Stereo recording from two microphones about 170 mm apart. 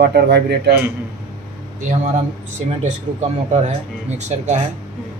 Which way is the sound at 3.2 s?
40° right (ahead or behind).